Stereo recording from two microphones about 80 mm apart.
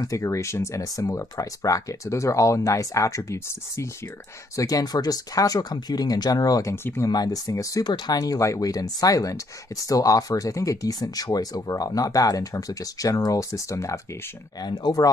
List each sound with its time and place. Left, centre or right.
0.0 s speech: left
4.6 s speech: left
6.7 s speech: left
7.1 s speech: left
7.8 s speech: left
14.6 s speech: left